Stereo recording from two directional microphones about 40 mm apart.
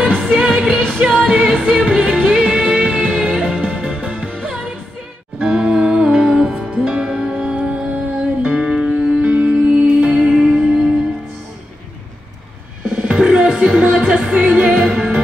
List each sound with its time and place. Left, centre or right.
0.2 s music: centre
5.4 s music: right
9.2 s music: right
10.1 s music: centre
12.8 s music: right
13.1 s music: right
14.8 s music: centre